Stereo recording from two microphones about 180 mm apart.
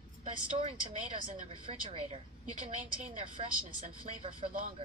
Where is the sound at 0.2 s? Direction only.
45° right (ahead or behind).